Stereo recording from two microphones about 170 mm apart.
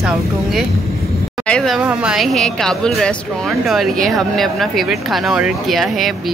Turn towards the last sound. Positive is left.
turn(degrees=0)  # may be behind; listen again after turning